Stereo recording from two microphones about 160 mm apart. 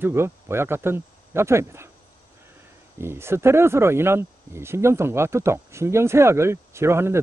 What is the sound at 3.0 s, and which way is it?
Speech, 15° right (ahead or behind).